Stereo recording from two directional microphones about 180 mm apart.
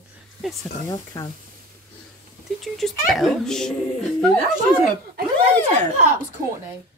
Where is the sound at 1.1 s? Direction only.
20° left (ahead or behind).